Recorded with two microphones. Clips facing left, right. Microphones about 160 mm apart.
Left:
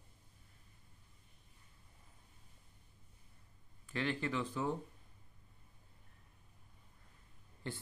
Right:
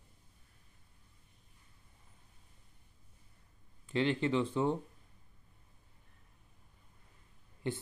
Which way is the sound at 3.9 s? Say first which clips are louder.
Right 7 dB; 25° right (ahead or behind).